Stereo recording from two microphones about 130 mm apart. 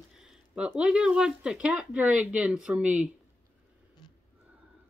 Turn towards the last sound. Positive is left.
turn(degrees=-10)  # may be behind; listen again after turning